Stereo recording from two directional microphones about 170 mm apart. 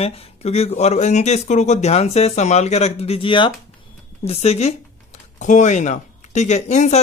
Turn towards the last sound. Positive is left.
turn(degrees=45)  # may be behind; listen again after turning